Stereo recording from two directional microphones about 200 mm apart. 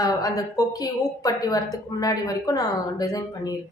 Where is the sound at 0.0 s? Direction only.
20° left (ahead or behind).